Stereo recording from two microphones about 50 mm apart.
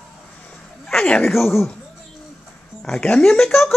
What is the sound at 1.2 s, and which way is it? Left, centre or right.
Speech, centre.